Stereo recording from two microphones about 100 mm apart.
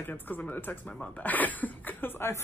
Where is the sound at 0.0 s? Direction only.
20° left (ahead or behind).